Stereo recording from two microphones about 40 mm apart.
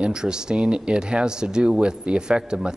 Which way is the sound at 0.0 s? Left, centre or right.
Right.